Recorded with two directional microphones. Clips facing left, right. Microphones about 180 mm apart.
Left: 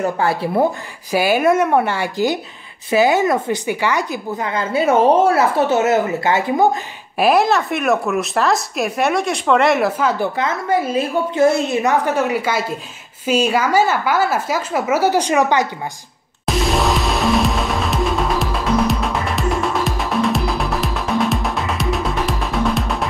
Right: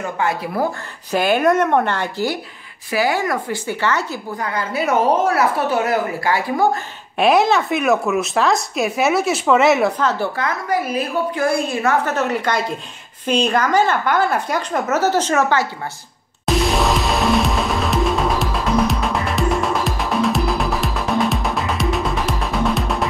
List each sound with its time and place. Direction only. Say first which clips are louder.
0.0 s speech: left 3 dB; 35° left (ahead or behind)
1.1 s a woman's voice: left 1 dB; 5° left (ahead or behind)
7.2 s speech: even; centre (ahead or behind)
10.1 s a woman's voice: left 2 dB; 20° left (ahead or behind)
16.4 s music: even; centre (ahead or behind)